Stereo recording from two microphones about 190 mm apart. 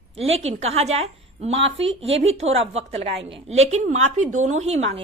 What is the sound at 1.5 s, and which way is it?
Speech, 80° right.